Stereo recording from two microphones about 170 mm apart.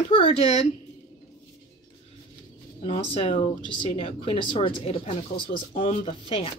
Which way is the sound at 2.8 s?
35° left (ahead or behind).